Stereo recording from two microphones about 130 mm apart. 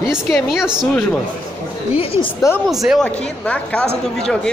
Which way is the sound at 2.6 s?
Centre (ahead or behind).